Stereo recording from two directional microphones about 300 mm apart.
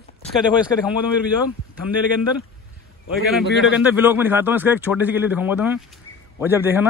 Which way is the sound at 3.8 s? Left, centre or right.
Centre.